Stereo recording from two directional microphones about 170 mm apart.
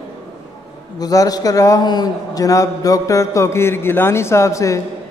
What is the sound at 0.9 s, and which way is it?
A man's voice, 20° left (ahead or behind).